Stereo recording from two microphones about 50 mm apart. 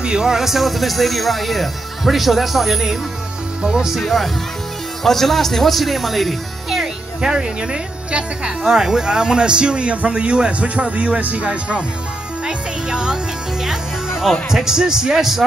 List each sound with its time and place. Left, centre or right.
0.0 s speech: centre
4.0 s speech: centre
7.2 s speech: centre
12.4 s music: centre
14.5 s speech: centre